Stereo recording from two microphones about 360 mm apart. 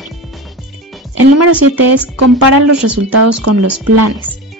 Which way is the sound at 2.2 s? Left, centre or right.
Right.